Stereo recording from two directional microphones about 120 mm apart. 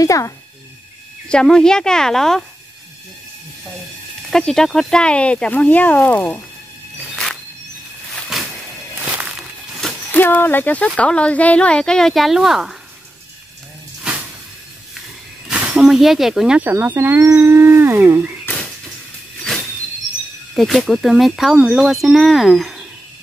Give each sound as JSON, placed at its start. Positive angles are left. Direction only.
{"t": 0.0, "sound": "speech", "side_deg": 30}
{"t": 1.3, "sound": "speech", "side_deg": 5}
{"t": 4.3, "sound": "speech", "side_deg": 5}
{"t": 8.1, "sound": "a sound", "side_deg": 0}
{"t": 10.1, "sound": "speech", "side_deg": 15}
{"t": 15.4, "sound": "speech", "side_deg": -10}
{"t": 18.5, "sound": "a sound", "side_deg": 15}
{"t": 20.5, "sound": "speech", "side_deg": 0}